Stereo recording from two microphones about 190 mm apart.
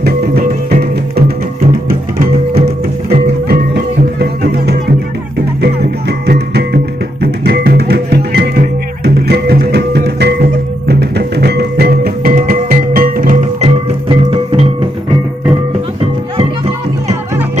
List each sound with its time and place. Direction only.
0.0 s music: 55° right (ahead or behind)
1.9 s music: 50° right (ahead or behind)
14.0 s music: 30° right (ahead or behind)